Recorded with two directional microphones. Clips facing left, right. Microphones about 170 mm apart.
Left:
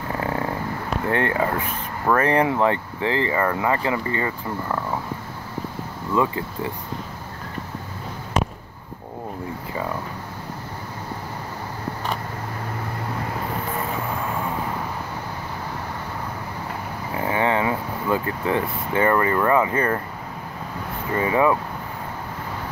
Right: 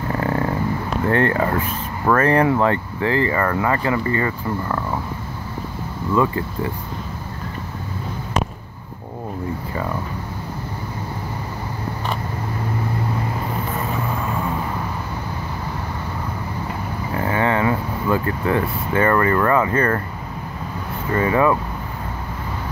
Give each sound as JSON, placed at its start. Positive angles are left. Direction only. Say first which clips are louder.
{"t": 1.1, "sound": "speech", "louder": "right 3 dB", "side_deg": 15}
{"t": 6.1, "sound": "speech", "louder": "right 2 dB", "side_deg": 15}
{"t": 17.1, "sound": "speech", "louder": "right 1 dB", "side_deg": 15}
{"t": 21.1, "sound": "speech", "louder": "right 2 dB", "side_deg": 15}